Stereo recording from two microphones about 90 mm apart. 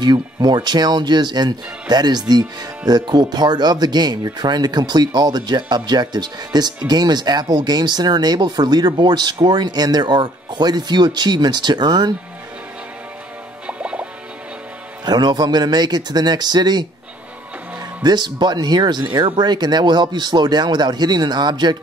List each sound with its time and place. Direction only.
0.0 s speech: 50° right (ahead or behind)
13.7 s music: 15° right (ahead or behind)
15.0 s speech: 55° right (ahead or behind)
18.0 s speech: 55° right (ahead or behind)